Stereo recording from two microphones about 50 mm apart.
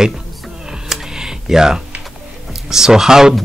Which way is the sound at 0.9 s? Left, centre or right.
Centre.